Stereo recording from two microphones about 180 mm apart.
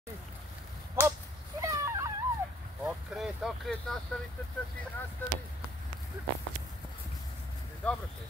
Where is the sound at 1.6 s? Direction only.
20° right (ahead or behind).